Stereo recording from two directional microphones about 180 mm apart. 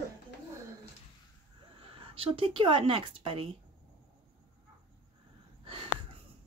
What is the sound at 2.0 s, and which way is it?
Speech, 30° right (ahead or behind).